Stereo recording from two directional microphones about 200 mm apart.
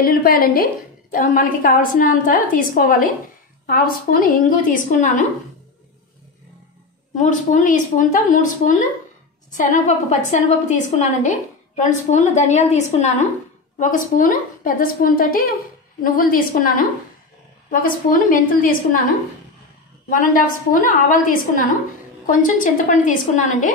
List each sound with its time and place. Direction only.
0.0 s a woman's voice: 45° left (ahead or behind)
7.2 s a woman's voice: 40° left (ahead or behind)
20.1 s a woman's voice: 45° left (ahead or behind)